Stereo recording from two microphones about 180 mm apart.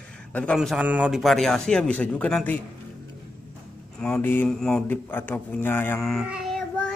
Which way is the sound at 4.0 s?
10° left (ahead or behind).